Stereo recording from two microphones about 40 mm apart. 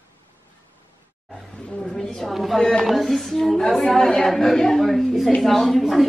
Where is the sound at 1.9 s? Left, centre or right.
Centre.